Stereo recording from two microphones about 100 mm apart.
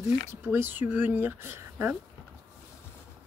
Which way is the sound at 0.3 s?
20° right (ahead or behind).